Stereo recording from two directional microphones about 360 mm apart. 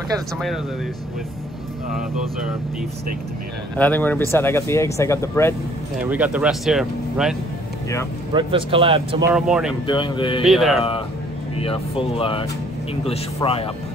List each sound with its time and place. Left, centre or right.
3.7 s speech: centre
5.9 s speech: centre
8.3 s a man's voice: centre
9.3 s speech: centre
9.8 s speech: centre
10.4 s speech: centre
11.5 s speech: centre